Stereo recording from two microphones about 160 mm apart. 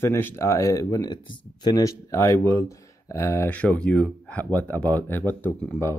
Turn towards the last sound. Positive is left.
turn(degrees=15)  # may be behind; listen again after turning